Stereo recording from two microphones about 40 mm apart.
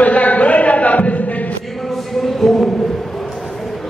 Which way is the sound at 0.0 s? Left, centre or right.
Left.